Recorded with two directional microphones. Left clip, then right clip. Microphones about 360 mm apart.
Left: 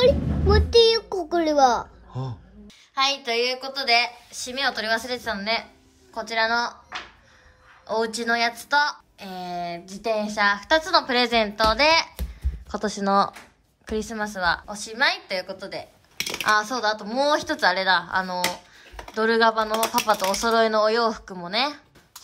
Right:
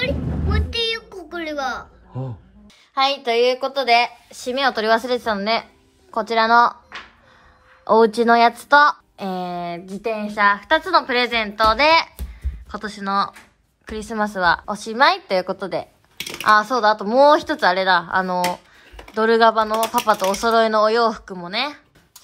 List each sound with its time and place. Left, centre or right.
0.0 s a sound: centre
2.9 s a woman's voice: centre
7.8 s a woman's voice: centre